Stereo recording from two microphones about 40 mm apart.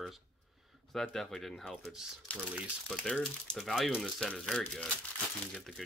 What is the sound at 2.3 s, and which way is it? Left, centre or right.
Speech, left.